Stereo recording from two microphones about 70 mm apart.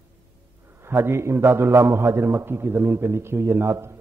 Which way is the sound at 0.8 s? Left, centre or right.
Right.